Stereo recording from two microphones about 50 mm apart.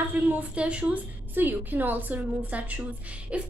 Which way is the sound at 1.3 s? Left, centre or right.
Right.